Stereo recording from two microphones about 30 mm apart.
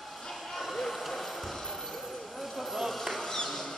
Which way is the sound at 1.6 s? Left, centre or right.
Centre.